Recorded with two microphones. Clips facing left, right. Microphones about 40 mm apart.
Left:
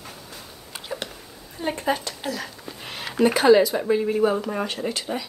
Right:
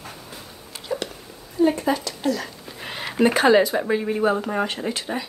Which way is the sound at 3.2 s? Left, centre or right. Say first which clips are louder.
Even; right.